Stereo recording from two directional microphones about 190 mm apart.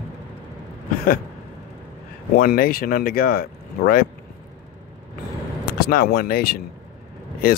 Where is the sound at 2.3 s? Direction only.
50° left (ahead or behind).